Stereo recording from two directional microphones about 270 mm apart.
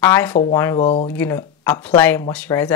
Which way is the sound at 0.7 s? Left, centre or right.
Left.